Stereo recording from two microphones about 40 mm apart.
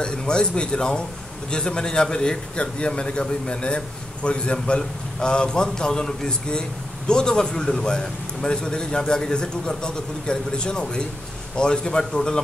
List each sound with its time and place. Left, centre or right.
0.0 s a man's voice: left